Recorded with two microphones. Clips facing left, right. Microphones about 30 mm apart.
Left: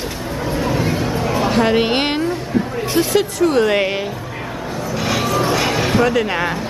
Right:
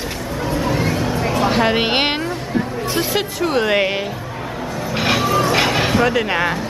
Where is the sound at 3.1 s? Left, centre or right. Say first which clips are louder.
Left 5 dB; centre.